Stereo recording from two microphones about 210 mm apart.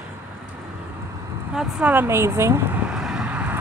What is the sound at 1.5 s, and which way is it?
Vehicle, 10° right (ahead or behind).